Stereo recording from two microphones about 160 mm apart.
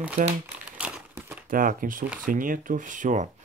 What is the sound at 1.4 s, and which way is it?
Speech, 60° right (ahead or behind).